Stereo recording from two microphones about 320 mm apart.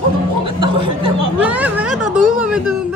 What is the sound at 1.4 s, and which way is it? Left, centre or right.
Speech, centre.